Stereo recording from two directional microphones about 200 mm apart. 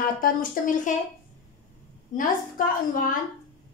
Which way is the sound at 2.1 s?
40° left (ahead or behind).